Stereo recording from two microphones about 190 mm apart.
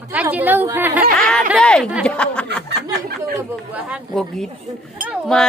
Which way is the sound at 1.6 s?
5° left (ahead or behind).